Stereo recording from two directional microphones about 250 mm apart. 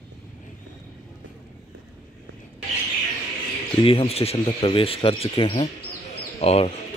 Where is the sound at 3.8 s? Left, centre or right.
Left.